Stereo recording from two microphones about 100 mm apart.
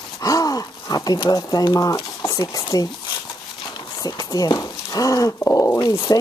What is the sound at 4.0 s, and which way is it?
Speech, 40° left (ahead or behind).